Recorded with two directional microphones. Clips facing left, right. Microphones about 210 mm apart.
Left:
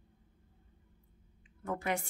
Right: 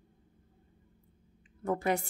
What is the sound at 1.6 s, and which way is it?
Speech, 35° right (ahead or behind).